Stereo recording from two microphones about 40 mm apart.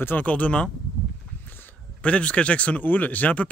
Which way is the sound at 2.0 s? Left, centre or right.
Left.